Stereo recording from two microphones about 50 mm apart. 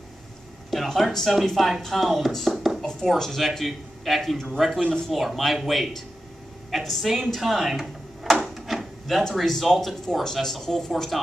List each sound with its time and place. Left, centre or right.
0.7 s speech: centre
2.5 s a sound: centre
2.8 s speech: centre
4.8 s speech: centre
5.1 s speech: centre
8.5 s wood: centre
9.3 s speech: centre